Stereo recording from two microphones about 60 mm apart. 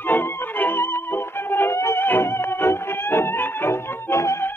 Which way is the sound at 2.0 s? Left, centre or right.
Left.